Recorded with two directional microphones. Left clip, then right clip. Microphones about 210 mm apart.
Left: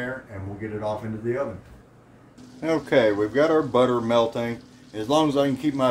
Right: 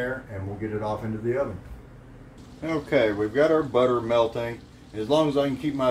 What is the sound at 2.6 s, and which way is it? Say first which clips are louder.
Speech: left 3 dB; 55° left (ahead or behind).